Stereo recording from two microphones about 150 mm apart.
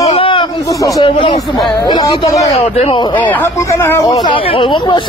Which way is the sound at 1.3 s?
25° left (ahead or behind).